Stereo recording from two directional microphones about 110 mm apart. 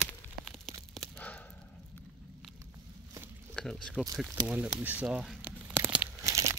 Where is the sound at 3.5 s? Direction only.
5° left (ahead or behind).